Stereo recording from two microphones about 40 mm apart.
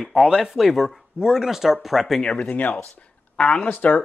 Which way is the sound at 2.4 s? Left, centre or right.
Left.